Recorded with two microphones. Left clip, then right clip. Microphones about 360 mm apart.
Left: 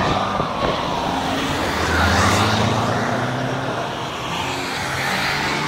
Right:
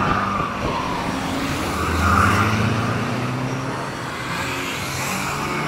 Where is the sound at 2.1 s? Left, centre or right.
Left.